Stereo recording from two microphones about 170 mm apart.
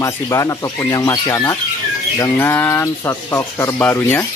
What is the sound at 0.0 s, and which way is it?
Speech, 20° left (ahead or behind).